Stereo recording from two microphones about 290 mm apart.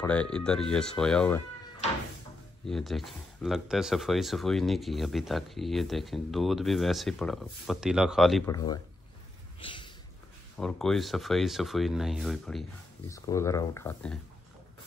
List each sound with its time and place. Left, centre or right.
0.0 s speech: centre
2.6 s speech: centre
8.5 s speech: centre
9.6 s a sound: centre
10.6 s speech: centre